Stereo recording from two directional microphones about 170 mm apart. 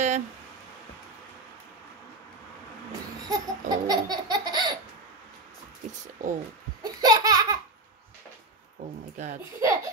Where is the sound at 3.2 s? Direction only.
20° right (ahead or behind).